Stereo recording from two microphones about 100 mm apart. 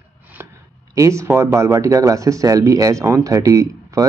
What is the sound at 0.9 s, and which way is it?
Speech, 30° right (ahead or behind).